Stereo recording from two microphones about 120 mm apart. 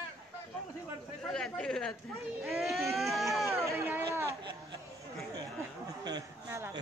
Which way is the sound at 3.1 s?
Centre (ahead or behind).